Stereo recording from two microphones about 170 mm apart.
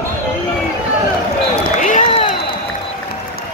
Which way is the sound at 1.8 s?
50° left (ahead or behind).